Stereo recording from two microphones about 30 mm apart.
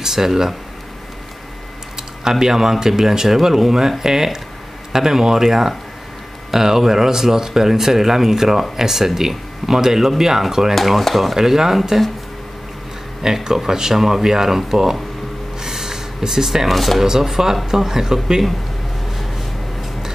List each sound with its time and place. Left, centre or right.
0.0 s speech: centre
2.0 s speech: centre
10.7 s speech: centre
11.3 s speech: centre
13.2 s speech: centre
15.6 s a sound: centre
16.6 s speech: centre
17.2 s speech: centre